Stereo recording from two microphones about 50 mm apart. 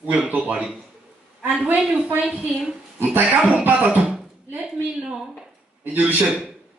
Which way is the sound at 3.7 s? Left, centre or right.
Right.